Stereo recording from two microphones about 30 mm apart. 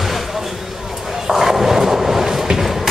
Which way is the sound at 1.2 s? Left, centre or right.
Centre.